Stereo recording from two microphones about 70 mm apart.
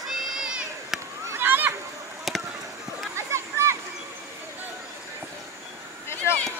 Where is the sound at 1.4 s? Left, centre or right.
Right.